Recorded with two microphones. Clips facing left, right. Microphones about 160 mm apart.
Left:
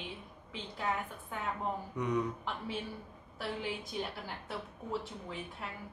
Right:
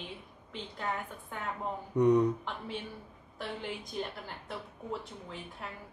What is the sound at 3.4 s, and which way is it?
Speech, 5° left (ahead or behind).